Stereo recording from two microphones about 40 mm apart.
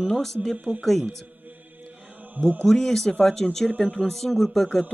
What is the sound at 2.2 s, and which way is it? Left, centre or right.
Mantra, right.